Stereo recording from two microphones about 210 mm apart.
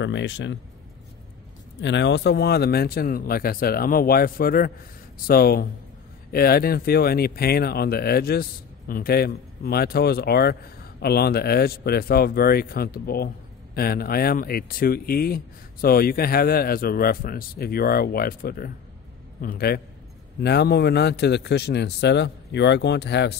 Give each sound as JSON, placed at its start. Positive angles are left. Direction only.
{"t": 0.0, "sound": "speech", "side_deg": 60}
{"t": 1.8, "sound": "speech", "side_deg": 55}